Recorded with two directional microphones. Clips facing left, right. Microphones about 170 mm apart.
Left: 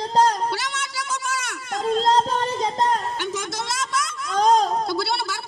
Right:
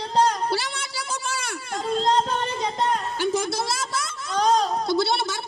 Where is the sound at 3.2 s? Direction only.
30° right (ahead or behind).